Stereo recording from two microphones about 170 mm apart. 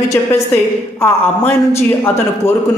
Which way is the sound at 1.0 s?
15° left (ahead or behind).